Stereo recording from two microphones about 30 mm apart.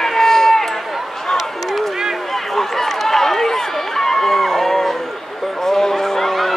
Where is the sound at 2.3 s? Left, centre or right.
Centre.